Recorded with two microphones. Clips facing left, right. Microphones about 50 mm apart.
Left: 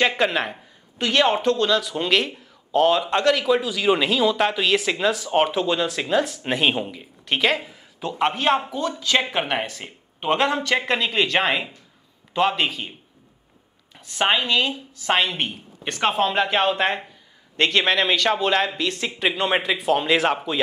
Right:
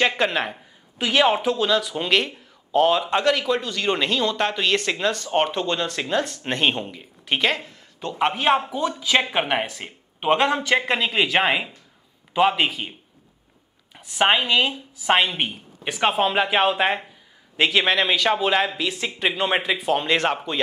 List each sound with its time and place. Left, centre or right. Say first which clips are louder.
0.0 s a woman's voice: left 1 dB; centre
13.9 s a woman's voice: right 2 dB; centre